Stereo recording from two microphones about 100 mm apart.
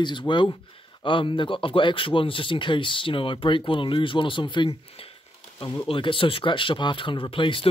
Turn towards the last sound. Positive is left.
turn(degrees=60)  # may be behind; listen again after turning